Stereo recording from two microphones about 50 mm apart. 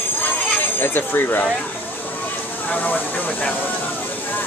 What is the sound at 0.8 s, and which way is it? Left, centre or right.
Speech, left.